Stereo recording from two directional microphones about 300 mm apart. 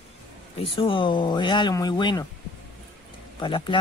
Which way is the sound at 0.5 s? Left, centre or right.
Centre.